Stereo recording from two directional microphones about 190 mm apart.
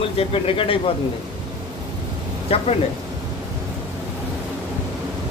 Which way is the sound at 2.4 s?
30° left (ahead or behind).